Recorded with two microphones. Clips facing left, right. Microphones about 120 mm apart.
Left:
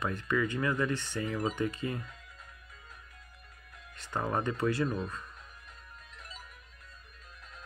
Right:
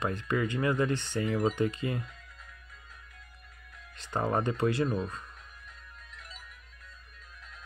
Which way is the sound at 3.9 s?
25° right (ahead or behind).